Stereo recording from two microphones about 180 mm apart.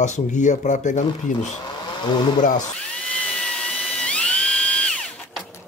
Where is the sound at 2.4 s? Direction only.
45° left (ahead or behind).